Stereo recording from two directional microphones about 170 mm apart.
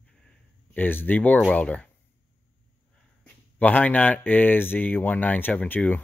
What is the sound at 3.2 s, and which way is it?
Speech, 10° left (ahead or behind).